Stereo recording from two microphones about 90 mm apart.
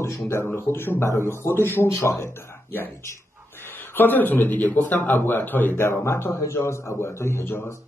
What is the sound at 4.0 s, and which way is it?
Speech, 20° left (ahead or behind).